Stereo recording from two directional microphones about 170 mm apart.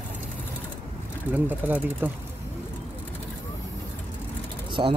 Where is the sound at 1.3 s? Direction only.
10° right (ahead or behind).